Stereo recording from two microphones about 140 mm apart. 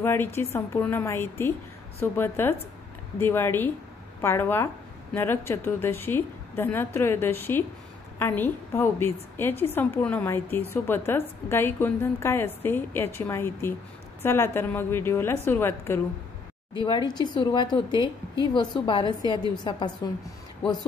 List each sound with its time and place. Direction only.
0.0 s a woman's voice: 15° left (ahead or behind)
16.7 s speech: 35° left (ahead or behind)